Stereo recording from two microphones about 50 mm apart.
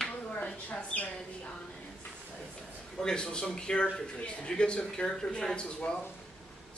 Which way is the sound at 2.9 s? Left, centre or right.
Centre.